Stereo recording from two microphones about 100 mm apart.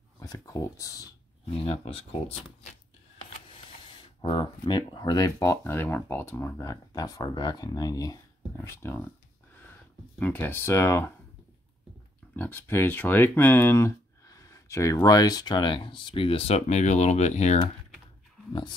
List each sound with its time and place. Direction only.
0.2 s speech: 35° left (ahead or behind)
4.2 s speech: 55° left (ahead or behind); by 5.7 s 35° left (ahead or behind)
5.7 s speech: 20° left (ahead or behind)
6.6 s speech: 35° left (ahead or behind)
8.6 s speech: 20° left (ahead or behind)
10.1 s speech: 20° left (ahead or behind)
12.4 s speech: 20° left (ahead or behind); by 17.6 s 90° left